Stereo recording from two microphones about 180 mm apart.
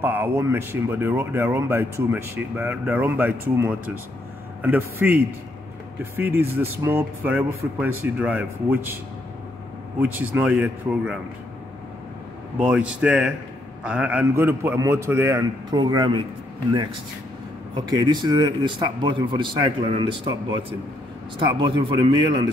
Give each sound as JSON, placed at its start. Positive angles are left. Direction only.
{"t": 0.0, "sound": "speech", "side_deg": -10}
{"t": 9.9, "sound": "speech", "side_deg": -10}
{"t": 12.5, "sound": "speech", "side_deg": -5}
{"t": 17.7, "sound": "speech", "side_deg": -25}